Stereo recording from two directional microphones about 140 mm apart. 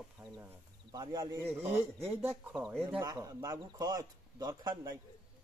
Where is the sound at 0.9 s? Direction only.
25° right (ahead or behind).